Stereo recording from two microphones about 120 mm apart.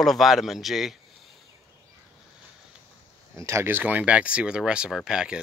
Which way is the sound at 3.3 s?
25° right (ahead or behind).